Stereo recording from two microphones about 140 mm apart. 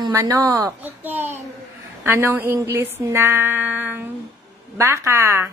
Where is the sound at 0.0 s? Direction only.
25° right (ahead or behind).